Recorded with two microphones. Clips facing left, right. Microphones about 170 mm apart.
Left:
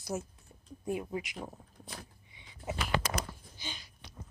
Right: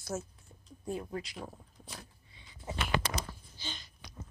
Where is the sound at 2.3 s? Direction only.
15° left (ahead or behind).